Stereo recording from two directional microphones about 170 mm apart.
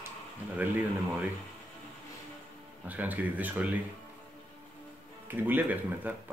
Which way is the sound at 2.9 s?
10° right (ahead or behind).